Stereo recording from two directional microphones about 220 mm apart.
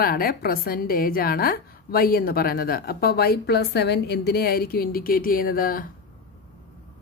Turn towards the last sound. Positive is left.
turn(degrees=40)  # may be behind; listen again after turning